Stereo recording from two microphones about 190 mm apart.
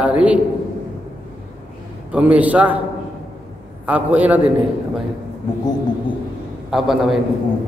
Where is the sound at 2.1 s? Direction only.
5° right (ahead or behind).